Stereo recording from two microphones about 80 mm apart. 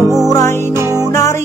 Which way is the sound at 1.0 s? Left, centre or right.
Left.